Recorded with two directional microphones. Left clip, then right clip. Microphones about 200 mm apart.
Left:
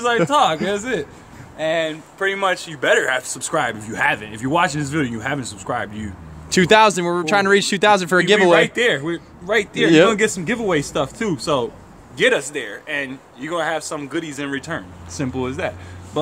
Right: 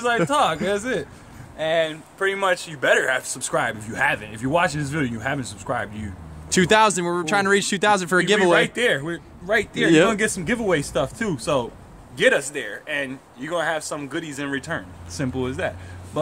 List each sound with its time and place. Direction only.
0.0 s speech: centre (ahead or behind)